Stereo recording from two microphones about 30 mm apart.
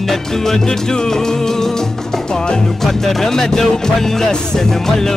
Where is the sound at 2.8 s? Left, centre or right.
Centre.